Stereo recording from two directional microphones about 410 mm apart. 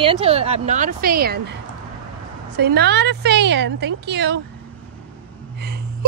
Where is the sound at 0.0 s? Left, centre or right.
Centre.